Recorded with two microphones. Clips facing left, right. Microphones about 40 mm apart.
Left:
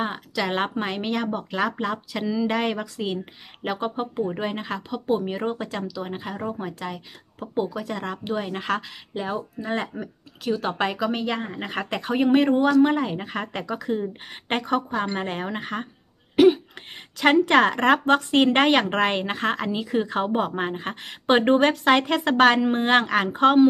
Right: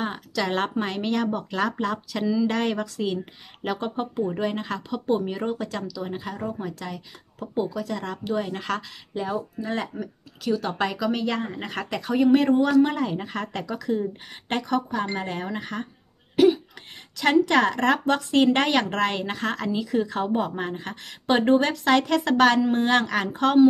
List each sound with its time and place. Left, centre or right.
0.0 s speech: centre
12.0 s speech: left
17.2 s speech: left